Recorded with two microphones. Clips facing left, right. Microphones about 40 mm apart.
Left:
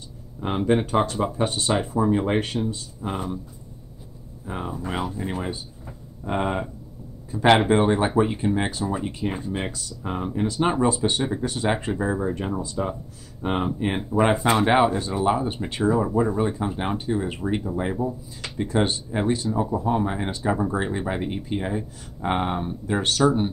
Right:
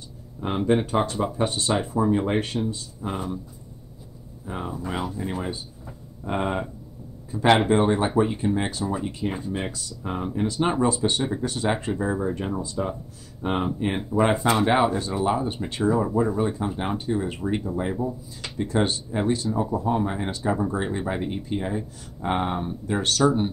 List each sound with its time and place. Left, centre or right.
0.4 s speech: centre
2.4 s speech: centre
4.5 s speech: centre